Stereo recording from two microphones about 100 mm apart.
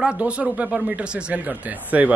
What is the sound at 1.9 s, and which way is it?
Speech, 15° right (ahead or behind).